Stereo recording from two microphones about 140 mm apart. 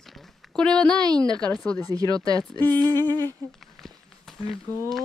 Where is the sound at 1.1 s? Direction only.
5° left (ahead or behind).